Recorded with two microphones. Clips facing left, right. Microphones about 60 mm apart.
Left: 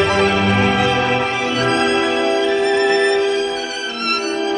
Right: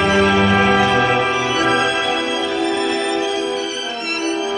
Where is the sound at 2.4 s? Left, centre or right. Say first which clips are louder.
Left 4 dB; left.